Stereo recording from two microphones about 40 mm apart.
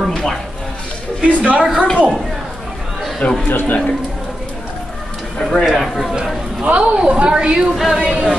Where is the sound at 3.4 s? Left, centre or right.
Left.